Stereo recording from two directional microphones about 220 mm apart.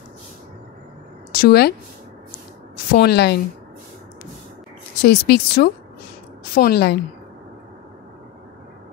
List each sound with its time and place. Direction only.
1.4 s speech: 45° left (ahead or behind)
2.9 s speech: 45° left (ahead or behind)
5.0 s speech: 45° left (ahead or behind)